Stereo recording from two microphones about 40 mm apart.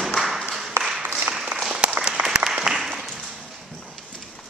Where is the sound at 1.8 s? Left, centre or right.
Right.